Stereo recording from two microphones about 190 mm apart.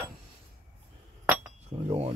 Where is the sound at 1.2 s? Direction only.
10° right (ahead or behind).